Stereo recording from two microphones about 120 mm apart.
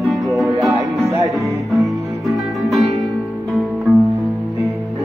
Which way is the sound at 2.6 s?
Centre (ahead or behind).